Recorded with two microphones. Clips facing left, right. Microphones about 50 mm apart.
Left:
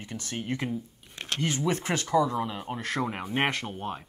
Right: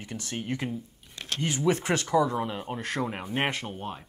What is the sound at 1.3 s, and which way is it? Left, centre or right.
Speech, left.